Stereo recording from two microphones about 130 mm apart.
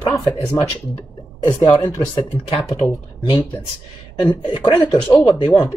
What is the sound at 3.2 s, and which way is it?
Speech, 30° left (ahead or behind).